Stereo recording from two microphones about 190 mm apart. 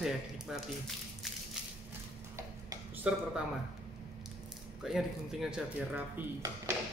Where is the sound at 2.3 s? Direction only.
15° right (ahead or behind).